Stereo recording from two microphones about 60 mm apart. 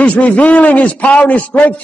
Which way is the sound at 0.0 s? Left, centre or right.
Left.